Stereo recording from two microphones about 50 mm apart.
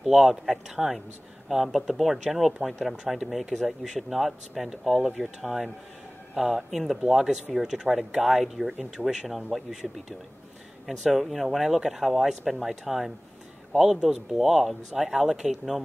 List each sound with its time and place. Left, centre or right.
0.0 s speech: centre
11.1 s speech: centre